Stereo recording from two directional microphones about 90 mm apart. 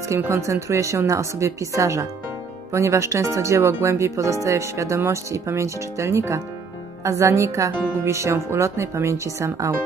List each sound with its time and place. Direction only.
0.1 s speech: 35° right (ahead or behind)